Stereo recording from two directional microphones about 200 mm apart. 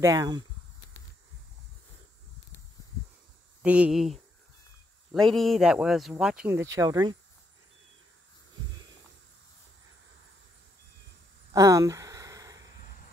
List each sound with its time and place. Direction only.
0.0 s speech: 20° right (ahead or behind)
3.6 s speech: 5° right (ahead or behind)
5.1 s speech: centre (ahead or behind)
6.7 s speech: 15° right (ahead or behind)
11.5 s a sound: 15° right (ahead or behind)